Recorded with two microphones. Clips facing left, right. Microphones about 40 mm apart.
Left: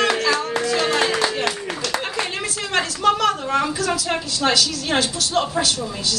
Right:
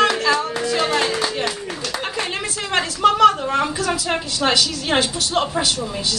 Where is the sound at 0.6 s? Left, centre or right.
Centre.